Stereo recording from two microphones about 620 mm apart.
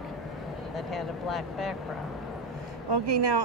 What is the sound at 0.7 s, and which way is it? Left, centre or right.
Speech, centre.